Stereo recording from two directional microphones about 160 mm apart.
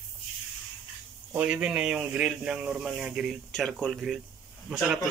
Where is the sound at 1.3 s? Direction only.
10° right (ahead or behind).